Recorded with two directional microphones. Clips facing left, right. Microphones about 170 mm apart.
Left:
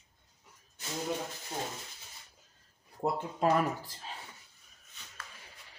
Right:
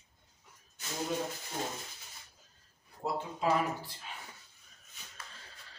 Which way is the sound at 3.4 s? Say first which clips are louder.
Left 3 dB; 40° left (ahead or behind).